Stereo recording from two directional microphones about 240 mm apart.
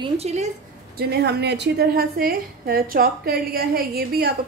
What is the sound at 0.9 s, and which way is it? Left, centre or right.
A woman's voice, right.